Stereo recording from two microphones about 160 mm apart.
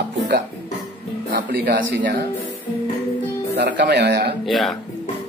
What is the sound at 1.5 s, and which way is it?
Speech, 80° right.